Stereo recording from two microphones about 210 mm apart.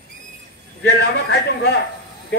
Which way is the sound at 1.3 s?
55° left (ahead or behind).